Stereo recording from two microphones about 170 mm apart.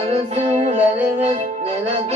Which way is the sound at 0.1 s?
40° right (ahead or behind).